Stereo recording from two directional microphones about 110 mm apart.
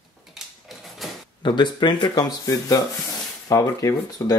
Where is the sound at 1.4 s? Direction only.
45° left (ahead or behind).